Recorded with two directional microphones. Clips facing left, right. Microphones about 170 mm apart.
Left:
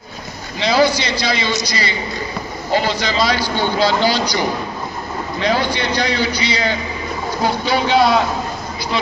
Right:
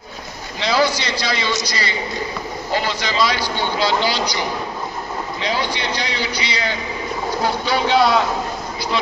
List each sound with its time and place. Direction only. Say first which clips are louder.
0.6 s a man's voice: left 3 dB; 20° left (ahead or behind); by 6.7 s 40° left (ahead or behind)
7.6 s a man's voice: left 2 dB; 15° left (ahead or behind)